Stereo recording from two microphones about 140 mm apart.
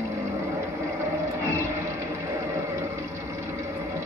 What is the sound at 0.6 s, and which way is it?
Music, 20° right (ahead or behind).